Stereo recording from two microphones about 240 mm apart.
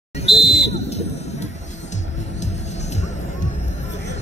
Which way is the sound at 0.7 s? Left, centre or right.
Left.